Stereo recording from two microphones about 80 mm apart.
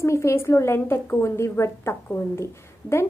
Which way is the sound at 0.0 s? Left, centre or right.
Left.